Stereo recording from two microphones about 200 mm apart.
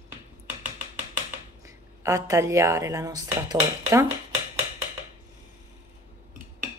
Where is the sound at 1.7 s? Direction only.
15° right (ahead or behind).